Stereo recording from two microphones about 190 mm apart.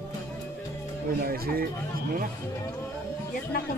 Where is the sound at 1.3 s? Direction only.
50° right (ahead or behind).